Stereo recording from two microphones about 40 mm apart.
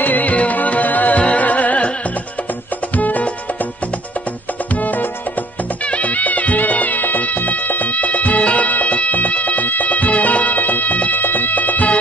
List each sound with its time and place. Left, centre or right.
0.0 s music: left
3.0 s music: left
5.9 s music: left